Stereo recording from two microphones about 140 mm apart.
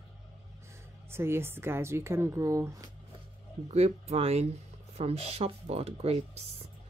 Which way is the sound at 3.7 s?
50° right (ahead or behind).